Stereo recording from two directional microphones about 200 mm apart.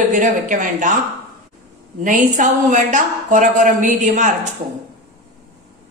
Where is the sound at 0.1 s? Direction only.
40° right (ahead or behind).